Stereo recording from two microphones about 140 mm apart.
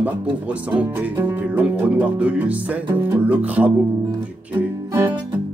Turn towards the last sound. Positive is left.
turn(degrees=-10)  # may be behind; listen again after turning